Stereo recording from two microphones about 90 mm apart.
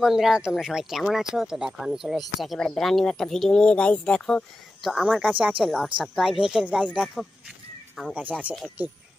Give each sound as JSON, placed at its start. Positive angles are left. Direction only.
{"t": 0.0, "sound": "speech", "side_deg": -5}
{"t": 5.2, "sound": "speech", "side_deg": -15}
{"t": 8.1, "sound": "speech", "side_deg": -15}